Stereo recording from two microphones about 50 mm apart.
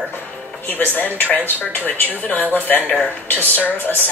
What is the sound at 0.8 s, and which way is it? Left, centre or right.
Speech, left.